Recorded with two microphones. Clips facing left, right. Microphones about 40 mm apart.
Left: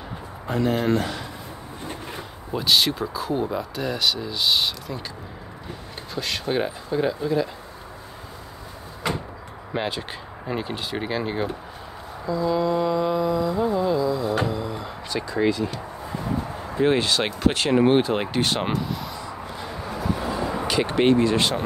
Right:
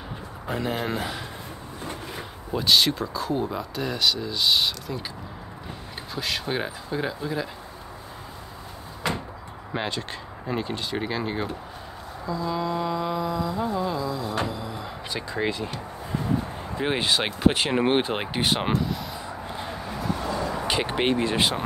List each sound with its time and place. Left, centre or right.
0.5 s speech: centre
2.5 s speech: centre
6.1 s speech: centre
9.7 s speech: centre
14.4 s a sound: centre
15.0 s speech: centre
16.8 s speech: centre
19.1 s a sound: right
19.9 s train: centre
20.6 s speech: centre
21.4 s speech: centre